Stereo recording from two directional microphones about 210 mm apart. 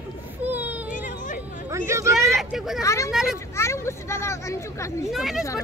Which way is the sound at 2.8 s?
15° left (ahead or behind).